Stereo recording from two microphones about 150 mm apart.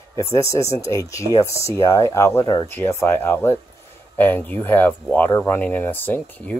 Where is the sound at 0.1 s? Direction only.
20° left (ahead or behind).